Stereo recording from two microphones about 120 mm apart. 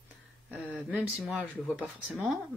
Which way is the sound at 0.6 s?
15° right (ahead or behind).